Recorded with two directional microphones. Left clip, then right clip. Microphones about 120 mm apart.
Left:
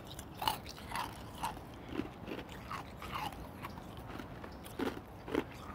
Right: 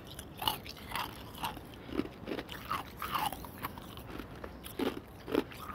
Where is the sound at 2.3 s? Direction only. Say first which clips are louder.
Right 6 dB; 30° right (ahead or behind).